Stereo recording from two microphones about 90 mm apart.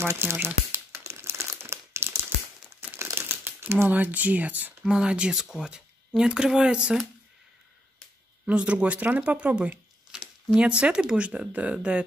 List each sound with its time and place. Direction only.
0.0 s crumpling: 25° right (ahead or behind)
3.9 s speech: 20° right (ahead or behind)
8.5 s speech: 15° right (ahead or behind)